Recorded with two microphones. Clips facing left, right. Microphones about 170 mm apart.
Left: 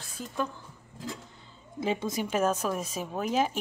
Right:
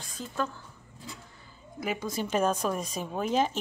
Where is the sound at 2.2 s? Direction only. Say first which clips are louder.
Right 3 dB; 5° left (ahead or behind).